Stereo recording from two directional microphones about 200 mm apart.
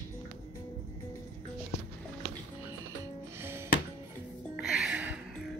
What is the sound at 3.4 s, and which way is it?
Music, 10° right (ahead or behind).